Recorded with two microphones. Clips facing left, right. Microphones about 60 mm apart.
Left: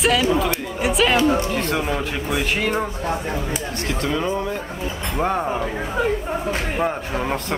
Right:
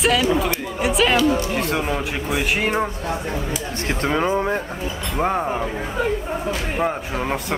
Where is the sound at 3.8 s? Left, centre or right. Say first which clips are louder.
Right 3 dB; right.